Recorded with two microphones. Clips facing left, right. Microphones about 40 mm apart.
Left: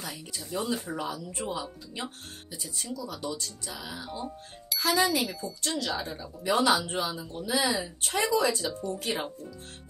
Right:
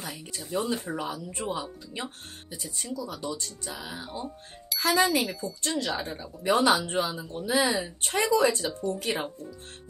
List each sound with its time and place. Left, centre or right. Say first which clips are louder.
0.0 s a sound: right 1 dB; right
0.4 s speech: right 2 dB; centre
6.4 s speech: right 2 dB; right